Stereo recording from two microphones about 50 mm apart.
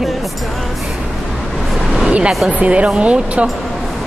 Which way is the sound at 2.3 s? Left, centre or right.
Centre.